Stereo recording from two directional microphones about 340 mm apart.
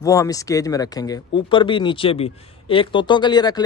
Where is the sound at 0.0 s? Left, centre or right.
Centre.